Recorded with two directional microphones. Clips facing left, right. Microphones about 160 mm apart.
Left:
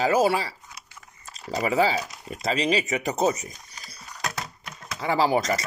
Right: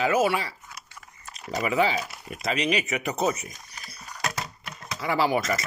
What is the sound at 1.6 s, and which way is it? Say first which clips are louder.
Speech: left 2 dB; 35° left (ahead or behind).